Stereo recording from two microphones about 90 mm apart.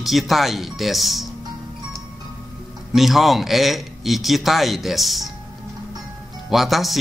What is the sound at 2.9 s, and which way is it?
A man's voice, centre (ahead or behind).